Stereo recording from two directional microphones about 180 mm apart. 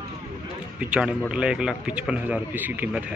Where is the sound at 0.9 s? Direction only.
5° right (ahead or behind).